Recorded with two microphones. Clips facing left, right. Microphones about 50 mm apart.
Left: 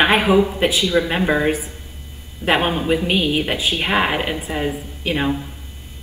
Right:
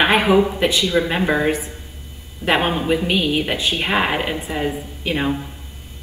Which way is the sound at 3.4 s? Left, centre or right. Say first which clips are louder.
Even; centre.